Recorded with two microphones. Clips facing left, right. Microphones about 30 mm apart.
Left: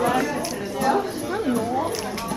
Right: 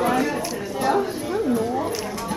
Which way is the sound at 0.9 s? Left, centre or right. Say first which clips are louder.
Right 1 dB; centre.